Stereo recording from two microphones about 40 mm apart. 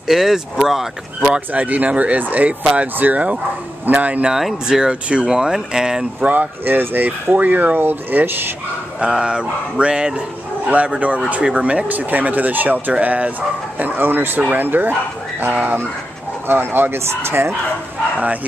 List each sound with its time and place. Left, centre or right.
0.1 s speech: centre
1.5 s speech: right
2.1 s speech: right
4.3 s speech: centre
4.6 s speech: centre
6.2 s speech: right
6.6 s speech: right
7.3 s speech: right
9.0 s speech: right
10.7 s speech: right
11.9 s speech: right
12.9 s speech: right
13.7 s speech: right
16.4 s speech: right